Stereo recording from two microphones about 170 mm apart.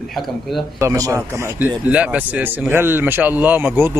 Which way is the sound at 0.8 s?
20° right (ahead or behind).